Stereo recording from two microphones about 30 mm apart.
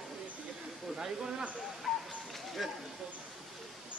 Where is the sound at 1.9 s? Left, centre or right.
Centre.